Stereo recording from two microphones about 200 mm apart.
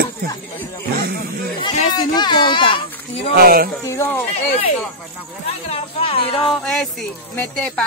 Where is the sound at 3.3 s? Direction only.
45° right (ahead or behind).